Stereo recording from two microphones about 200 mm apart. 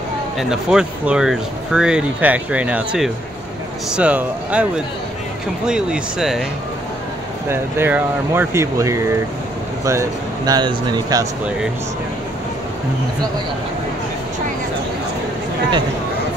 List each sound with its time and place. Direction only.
0.4 s speech: 5° right (ahead or behind)
7.4 s speech: 10° right (ahead or behind)